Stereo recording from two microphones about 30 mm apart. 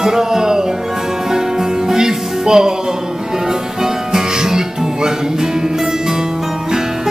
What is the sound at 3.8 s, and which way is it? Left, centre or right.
Music, centre.